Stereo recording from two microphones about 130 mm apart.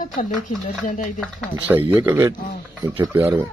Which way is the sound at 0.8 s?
90° left.